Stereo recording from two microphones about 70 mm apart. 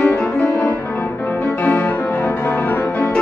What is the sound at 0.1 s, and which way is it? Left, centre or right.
Music, left.